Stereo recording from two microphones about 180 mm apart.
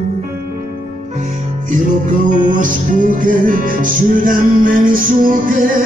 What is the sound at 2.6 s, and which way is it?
Music, 50° right (ahead or behind).